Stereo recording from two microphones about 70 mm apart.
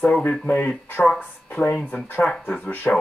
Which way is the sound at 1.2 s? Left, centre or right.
Left.